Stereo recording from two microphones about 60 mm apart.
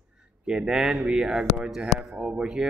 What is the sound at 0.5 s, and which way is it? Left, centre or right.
A man's voice, centre.